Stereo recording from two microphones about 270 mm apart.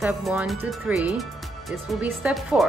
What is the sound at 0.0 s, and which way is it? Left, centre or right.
Speech, centre.